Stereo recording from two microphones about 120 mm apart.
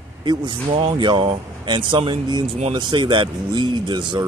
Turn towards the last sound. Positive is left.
turn(degrees=-40)  # may be behind; listen again after turning